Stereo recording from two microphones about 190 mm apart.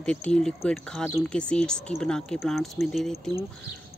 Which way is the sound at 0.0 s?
5° left (ahead or behind).